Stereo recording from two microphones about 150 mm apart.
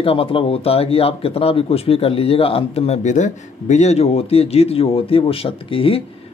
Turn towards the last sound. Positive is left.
turn(degrees=35)  # may be behind; listen again after turning